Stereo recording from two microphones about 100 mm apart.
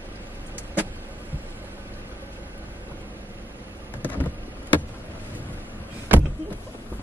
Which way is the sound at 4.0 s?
20° left (ahead or behind).